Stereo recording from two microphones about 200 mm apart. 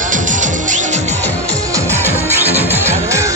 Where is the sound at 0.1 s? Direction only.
40° right (ahead or behind).